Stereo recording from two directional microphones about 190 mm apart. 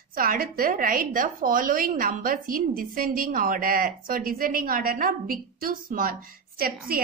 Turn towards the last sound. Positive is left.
turn(degrees=-50)  # may be behind; listen again after turning